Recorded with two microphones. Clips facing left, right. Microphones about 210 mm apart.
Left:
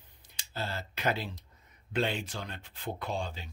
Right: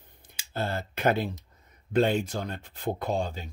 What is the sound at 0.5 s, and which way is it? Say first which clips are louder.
Speech: right 6 dB; 55° right (ahead or behind).